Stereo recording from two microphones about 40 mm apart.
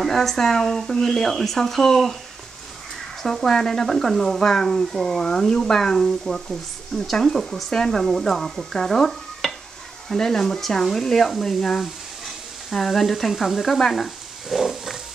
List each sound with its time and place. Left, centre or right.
0.0 s speech: centre
3.2 s speech: centre
3.4 s speech: centre
3.8 s speech: centre
5.9 s speech: centre
13.3 s speech: centre
13.9 s frying: centre
14.6 s wild animals: centre